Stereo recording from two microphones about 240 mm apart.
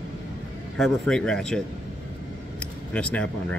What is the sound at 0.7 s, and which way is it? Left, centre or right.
Speech, centre.